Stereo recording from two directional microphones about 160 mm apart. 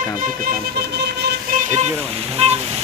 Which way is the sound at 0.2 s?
65° right (ahead or behind).